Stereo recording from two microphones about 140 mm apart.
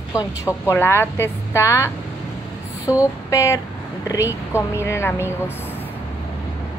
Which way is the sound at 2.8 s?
10° right (ahead or behind).